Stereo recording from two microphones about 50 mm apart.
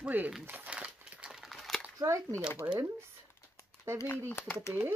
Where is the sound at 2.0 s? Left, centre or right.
Right.